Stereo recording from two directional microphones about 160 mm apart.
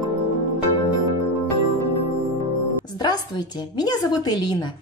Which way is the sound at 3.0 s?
25° left (ahead or behind).